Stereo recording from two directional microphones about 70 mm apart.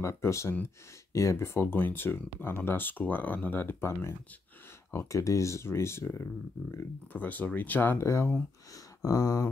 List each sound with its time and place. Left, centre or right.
0.0 s speech: left
4.9 s speech: left
7.1 s speech: left
8.0 s speech: left
8.7 s a sound: left